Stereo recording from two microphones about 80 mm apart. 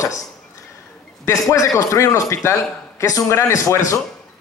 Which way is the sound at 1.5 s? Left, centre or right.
Left.